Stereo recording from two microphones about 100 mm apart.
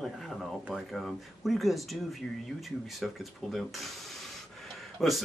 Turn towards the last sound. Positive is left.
turn(degrees=0)  # may be behind; listen again after turning